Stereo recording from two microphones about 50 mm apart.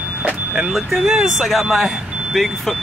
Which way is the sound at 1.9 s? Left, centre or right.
Centre.